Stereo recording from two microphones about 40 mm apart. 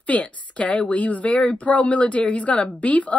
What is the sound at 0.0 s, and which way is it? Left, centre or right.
A woman's voice, left.